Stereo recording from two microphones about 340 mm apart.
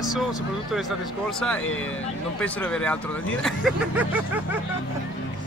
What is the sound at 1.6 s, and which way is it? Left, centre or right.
Speech, left.